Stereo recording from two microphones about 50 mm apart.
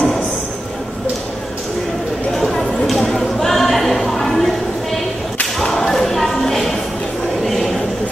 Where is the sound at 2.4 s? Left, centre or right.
Centre.